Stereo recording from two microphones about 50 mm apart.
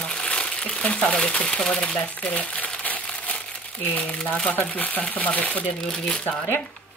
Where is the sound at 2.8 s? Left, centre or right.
Left.